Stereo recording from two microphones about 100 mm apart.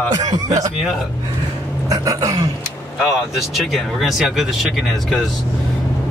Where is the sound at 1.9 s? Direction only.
35° right (ahead or behind).